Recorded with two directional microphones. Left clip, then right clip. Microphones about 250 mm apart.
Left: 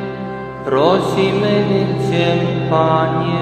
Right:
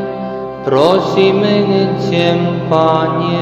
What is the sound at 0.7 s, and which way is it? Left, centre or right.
Mantra, right.